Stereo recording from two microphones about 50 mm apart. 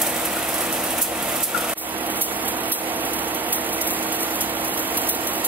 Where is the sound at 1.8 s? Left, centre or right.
Right.